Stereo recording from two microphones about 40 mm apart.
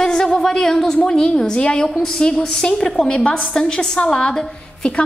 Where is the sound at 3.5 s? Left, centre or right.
Centre.